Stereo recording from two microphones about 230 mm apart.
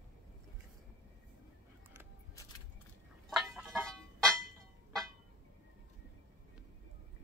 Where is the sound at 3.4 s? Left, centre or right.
Centre.